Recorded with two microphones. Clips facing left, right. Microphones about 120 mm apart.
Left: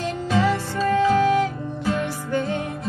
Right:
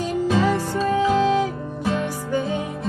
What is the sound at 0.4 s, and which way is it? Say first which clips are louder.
Music: right 1 dB; 15° right (ahead or behind).